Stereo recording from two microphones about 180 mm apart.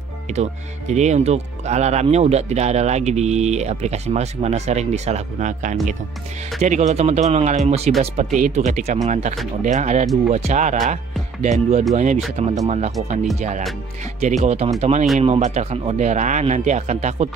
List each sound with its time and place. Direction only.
0.3 s speech: 40° right (ahead or behind)
14.2 s speech: 40° right (ahead or behind)